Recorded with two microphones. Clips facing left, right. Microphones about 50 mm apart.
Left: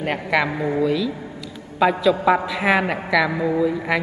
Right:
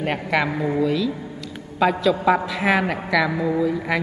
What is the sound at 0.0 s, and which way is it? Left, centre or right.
A man's voice, centre.